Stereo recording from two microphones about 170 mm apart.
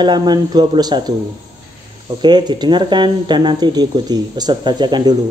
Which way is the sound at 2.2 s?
25° right (ahead or behind).